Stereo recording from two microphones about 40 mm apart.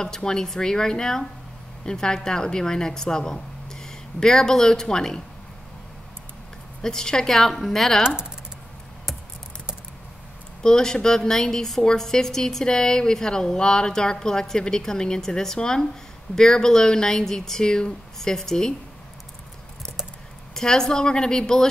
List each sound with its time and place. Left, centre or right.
0.0 s a woman's voice: centre
6.8 s a woman's voice: centre
10.6 s a woman's voice: centre
20.5 s a woman's voice: centre